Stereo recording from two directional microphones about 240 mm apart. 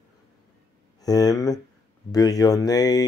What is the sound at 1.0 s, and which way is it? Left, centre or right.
Speech, centre.